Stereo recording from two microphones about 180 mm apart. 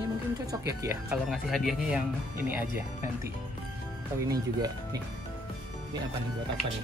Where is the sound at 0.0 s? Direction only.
20° right (ahead or behind).